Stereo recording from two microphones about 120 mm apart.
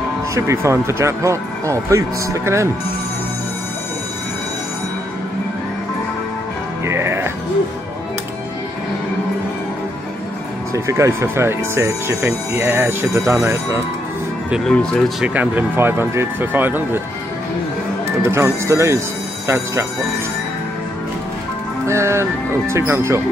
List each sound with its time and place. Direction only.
0.3 s speech: 25° right (ahead or behind)
6.9 s music: 20° right (ahead or behind)
10.7 s speech: 25° right (ahead or behind)
14.7 s speech: 5° left (ahead or behind)
15.2 s speech: 15° right (ahead or behind)
18.0 s speech: 20° right (ahead or behind)
21.8 s speech: 25° right (ahead or behind)